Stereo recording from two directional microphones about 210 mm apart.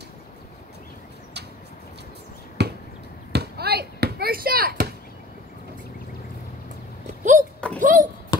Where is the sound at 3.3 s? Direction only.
50° right (ahead or behind).